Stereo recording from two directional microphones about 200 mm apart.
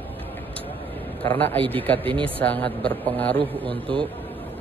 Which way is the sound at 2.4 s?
5° left (ahead or behind).